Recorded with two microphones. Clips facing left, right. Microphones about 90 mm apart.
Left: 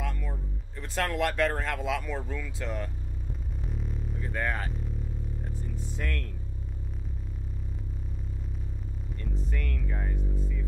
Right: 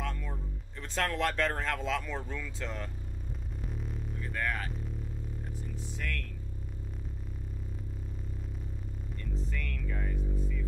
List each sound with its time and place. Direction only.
0.0 s music: 5° left (ahead or behind)
1.6 s speech: 5° left (ahead or behind)
3.7 s vehicle: centre (ahead or behind)
4.2 s speech: 25° left (ahead or behind)
5.9 s speech: 35° left (ahead or behind)
9.5 s hum: 25° left (ahead or behind)